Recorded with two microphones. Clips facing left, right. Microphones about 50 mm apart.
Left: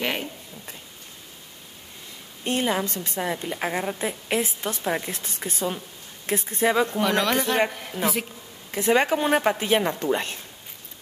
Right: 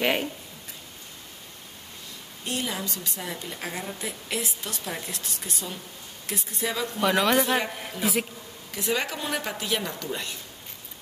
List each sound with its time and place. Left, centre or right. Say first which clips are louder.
0.0 s a sound: right 3 dB; centre
2.4 s a woman's voice: left 7 dB; left
7.0 s speech: even; centre
8.7 s a woman's voice: left 8 dB; left